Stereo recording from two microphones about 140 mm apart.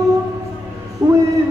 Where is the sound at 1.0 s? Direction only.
20° right (ahead or behind).